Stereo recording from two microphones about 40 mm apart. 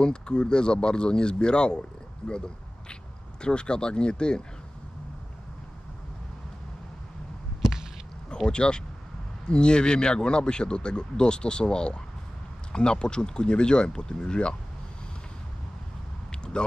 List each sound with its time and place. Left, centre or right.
0.0 s speech: left
3.4 s speech: left
8.5 s speech: left
16.5 s speech: left